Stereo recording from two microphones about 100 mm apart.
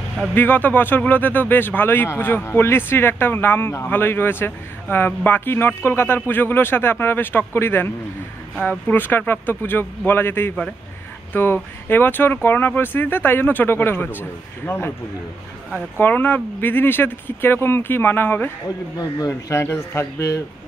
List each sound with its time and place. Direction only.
0.3 s speech: 20° left (ahead or behind)
16.0 s speech: 15° left (ahead or behind)
18.9 s a man's voice: 35° left (ahead or behind)